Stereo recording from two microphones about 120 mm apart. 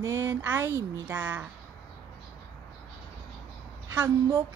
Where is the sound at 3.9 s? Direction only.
25° right (ahead or behind).